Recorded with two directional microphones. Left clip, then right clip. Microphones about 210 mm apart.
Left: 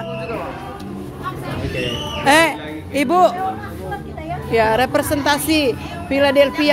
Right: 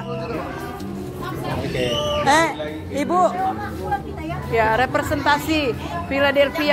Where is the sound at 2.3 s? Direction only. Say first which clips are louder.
Left 6 dB; 35° left (ahead or behind).